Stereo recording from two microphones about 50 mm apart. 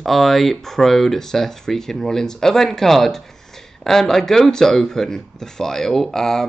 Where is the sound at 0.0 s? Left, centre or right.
Centre.